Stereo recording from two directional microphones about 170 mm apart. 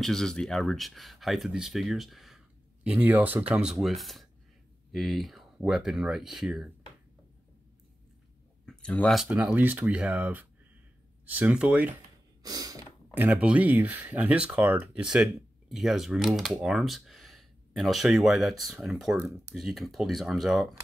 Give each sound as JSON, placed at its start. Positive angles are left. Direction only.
{"t": 0.0, "sound": "speech", "side_deg": 5}
{"t": 8.6, "sound": "speech", "side_deg": 5}
{"t": 12.4, "sound": "a sound", "side_deg": -20}
{"t": 13.1, "sound": "speech", "side_deg": -10}